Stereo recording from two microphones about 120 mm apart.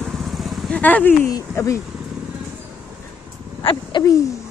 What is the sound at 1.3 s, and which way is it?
Speech, 25° left (ahead or behind).